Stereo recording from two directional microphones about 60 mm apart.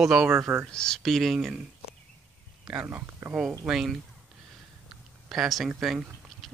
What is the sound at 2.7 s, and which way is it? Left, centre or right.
Speech, right.